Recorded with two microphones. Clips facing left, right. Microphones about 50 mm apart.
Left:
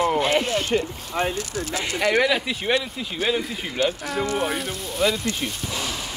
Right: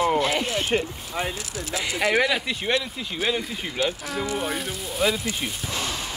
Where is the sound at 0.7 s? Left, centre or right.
Centre.